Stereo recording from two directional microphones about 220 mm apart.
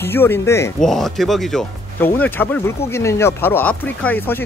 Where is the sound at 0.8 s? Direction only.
Centre (ahead or behind).